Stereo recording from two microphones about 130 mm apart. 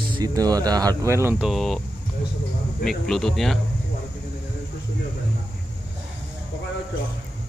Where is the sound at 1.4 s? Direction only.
Centre (ahead or behind).